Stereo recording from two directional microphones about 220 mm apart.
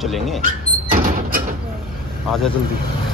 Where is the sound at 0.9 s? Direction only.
40° right (ahead or behind).